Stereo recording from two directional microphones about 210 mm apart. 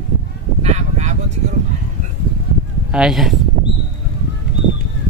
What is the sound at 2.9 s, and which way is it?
Speech, 5° right (ahead or behind).